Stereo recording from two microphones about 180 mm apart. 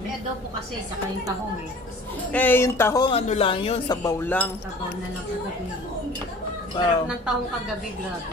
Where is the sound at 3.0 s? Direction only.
35° left (ahead or behind); by 4.5 s 10° left (ahead or behind).